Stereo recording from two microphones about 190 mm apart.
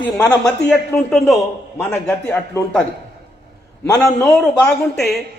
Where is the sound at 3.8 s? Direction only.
20° left (ahead or behind).